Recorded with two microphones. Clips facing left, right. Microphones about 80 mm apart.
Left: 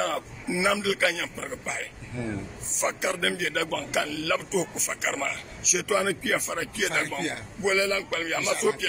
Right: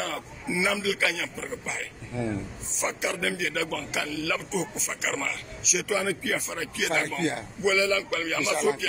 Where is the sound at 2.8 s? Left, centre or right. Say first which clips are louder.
Left 2 dB; left.